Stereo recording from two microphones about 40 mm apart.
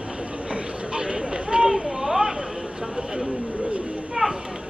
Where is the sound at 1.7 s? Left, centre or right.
Centre.